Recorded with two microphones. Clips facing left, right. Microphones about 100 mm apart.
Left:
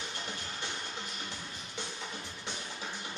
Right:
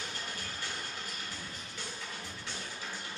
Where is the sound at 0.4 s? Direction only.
20° left (ahead or behind).